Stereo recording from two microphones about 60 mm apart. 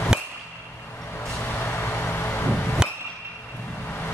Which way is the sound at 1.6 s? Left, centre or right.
Left.